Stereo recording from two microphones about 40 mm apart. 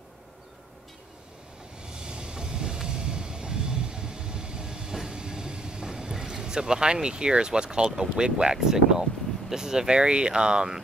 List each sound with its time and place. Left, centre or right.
1.8 s vehicle: right
5.1 s speech: centre